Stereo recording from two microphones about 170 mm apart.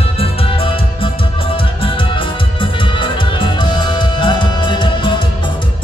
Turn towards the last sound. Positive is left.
turn(degrees=30)  # may be behind; listen again after turning